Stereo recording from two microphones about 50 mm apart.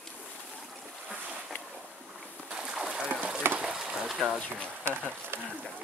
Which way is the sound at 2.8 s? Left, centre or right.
Centre.